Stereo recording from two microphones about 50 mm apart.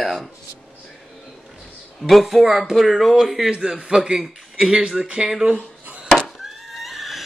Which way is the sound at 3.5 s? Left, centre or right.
Centre.